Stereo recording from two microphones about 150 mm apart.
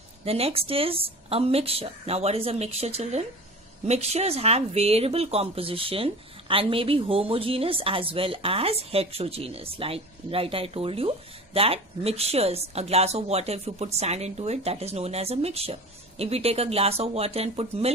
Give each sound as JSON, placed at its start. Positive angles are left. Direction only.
{"t": 0.2, "sound": "speech", "side_deg": -40}